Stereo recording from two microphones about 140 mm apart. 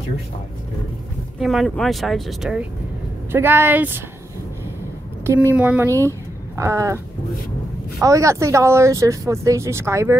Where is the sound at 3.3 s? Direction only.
15° right (ahead or behind).